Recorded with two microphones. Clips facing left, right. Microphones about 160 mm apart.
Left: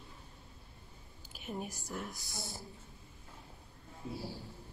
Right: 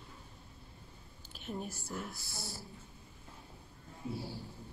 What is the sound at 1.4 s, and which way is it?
A woman's voice, 10° left (ahead or behind).